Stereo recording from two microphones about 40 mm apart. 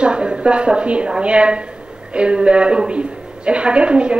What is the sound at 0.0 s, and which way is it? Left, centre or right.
A woman's voice, right.